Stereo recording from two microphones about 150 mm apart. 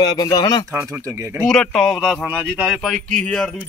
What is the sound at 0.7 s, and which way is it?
Speech, 10° right (ahead or behind).